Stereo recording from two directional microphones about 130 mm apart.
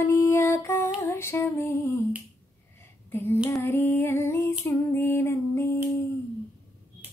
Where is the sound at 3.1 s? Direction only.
15° left (ahead or behind).